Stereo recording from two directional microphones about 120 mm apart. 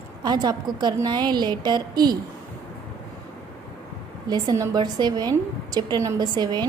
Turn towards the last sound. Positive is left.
turn(degrees=-35)  # may be behind; listen again after turning